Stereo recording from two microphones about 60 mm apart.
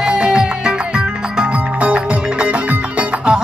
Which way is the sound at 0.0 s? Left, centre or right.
Centre.